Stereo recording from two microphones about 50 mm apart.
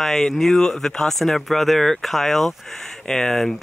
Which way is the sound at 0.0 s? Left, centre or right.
Centre.